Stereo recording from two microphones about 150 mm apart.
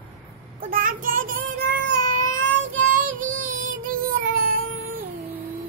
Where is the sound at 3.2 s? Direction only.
65° right (ahead or behind).